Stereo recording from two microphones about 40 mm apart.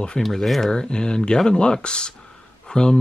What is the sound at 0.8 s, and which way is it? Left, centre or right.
Speech, left.